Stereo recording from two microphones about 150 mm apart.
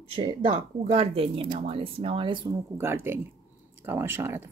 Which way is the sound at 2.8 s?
15° right (ahead or behind).